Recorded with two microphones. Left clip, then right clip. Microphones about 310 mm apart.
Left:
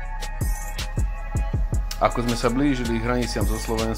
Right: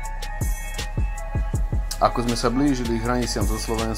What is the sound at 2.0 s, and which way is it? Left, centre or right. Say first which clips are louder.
Speech: right 1 dB; centre.